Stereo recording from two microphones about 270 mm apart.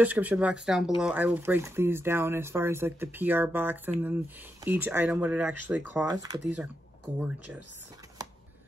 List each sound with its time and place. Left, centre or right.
0.0 s speech: centre